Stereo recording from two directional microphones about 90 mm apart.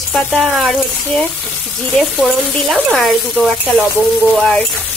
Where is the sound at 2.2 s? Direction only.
5° left (ahead or behind).